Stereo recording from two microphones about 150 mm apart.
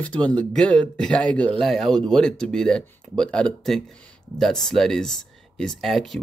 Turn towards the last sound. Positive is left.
turn(degrees=0)  # may be behind; listen again after turning